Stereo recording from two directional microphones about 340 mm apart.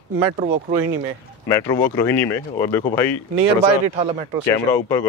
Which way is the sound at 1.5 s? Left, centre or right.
Centre.